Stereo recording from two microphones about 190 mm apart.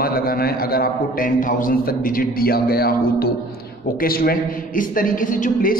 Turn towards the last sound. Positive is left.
turn(degrees=45)  # may be behind; listen again after turning